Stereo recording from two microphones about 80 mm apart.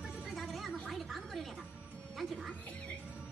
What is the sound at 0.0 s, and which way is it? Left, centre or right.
Music, centre.